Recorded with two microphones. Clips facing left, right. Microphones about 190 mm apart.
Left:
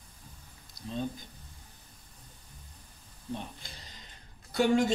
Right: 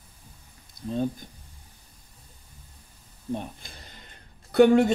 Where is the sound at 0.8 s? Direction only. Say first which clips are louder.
Right 8 dB; 55° right (ahead or behind).